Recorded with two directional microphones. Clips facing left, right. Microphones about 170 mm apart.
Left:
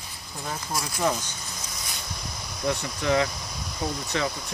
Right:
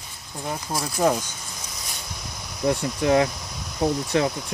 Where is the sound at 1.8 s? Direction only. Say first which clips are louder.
Even; centre (ahead or behind).